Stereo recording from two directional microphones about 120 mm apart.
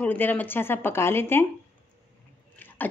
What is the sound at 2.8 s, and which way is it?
Beatboxing, 15° left (ahead or behind).